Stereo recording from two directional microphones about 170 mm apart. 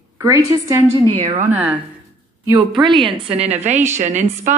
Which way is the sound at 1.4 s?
10° right (ahead or behind).